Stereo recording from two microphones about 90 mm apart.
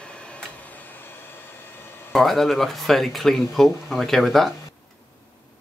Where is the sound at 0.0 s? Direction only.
10° left (ahead or behind).